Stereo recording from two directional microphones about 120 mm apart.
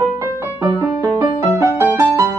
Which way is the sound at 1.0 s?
25° right (ahead or behind).